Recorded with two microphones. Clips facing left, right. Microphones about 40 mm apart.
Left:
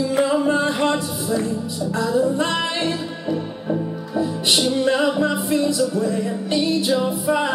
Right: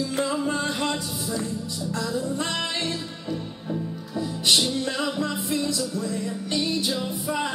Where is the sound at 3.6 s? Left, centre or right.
Left.